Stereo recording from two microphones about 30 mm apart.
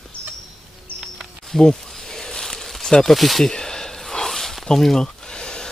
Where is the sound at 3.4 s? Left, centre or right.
Centre.